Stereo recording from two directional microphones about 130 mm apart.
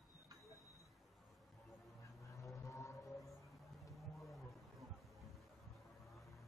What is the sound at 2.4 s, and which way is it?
Vehicle, 25° left (ahead or behind).